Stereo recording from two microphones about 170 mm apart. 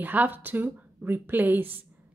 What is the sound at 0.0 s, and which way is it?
A woman's voice, 10° right (ahead or behind).